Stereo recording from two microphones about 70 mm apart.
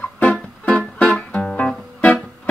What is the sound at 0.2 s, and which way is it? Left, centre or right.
Music, centre.